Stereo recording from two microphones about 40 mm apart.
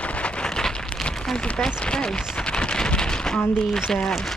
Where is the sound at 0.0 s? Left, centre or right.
Left; by 1.4 s centre.